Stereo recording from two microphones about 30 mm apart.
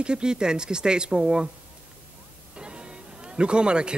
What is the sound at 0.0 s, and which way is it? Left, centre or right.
Speech, right.